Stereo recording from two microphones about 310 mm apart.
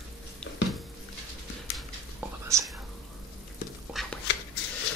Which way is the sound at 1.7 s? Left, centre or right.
Centre.